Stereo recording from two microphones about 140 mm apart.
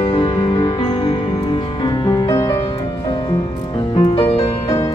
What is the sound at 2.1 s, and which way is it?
Music, 25° left (ahead or behind).